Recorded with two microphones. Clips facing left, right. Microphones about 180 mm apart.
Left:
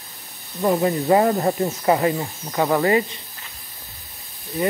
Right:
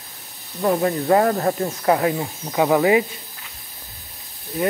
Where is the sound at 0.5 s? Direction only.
5° left (ahead or behind).